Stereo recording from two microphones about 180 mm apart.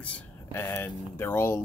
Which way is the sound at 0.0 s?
10° left (ahead or behind).